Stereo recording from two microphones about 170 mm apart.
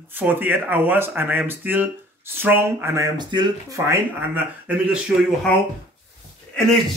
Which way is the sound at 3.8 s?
15° right (ahead or behind).